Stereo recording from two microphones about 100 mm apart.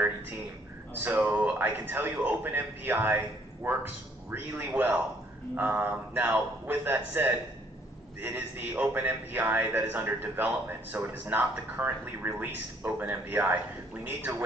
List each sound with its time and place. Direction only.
1.0 s a man's voice: 15° right (ahead or behind)